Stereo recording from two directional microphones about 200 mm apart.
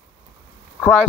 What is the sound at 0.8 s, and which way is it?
Speech, 5° left (ahead or behind).